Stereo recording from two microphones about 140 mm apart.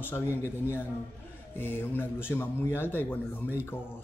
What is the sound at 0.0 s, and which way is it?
Speech, 15° left (ahead or behind).